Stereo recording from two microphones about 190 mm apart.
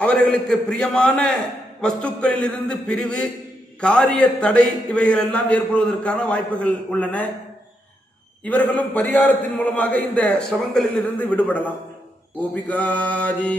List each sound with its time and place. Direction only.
0.0 s a man's voice: 5° left (ahead or behind)
8.5 s a man's voice: 10° left (ahead or behind)